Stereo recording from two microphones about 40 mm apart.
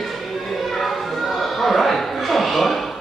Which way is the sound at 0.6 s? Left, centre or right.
Centre.